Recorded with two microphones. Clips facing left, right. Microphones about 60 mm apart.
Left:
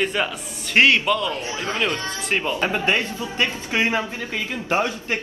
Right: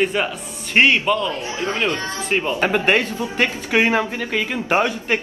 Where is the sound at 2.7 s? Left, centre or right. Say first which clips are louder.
Right 6 dB; right.